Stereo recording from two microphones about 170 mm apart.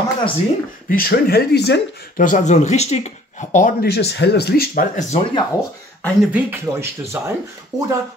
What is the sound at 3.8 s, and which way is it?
Speech, 75° left (ahead or behind).